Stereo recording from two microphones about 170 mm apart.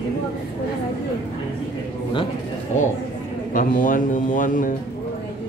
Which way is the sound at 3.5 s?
55° left (ahead or behind).